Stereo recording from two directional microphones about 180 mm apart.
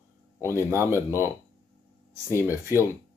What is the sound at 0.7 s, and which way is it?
Speech, 15° right (ahead or behind).